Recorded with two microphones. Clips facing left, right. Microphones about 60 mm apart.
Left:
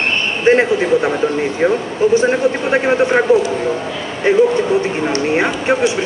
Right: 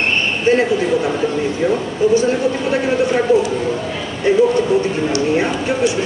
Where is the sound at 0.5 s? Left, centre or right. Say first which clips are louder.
Left 3 dB; left.